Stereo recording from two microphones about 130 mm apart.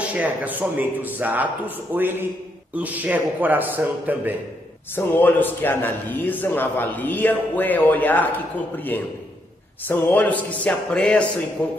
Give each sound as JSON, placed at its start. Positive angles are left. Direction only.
{"t": 0.0, "sound": "a man's voice", "side_deg": -10}
{"t": 4.9, "sound": "a man's voice", "side_deg": 15}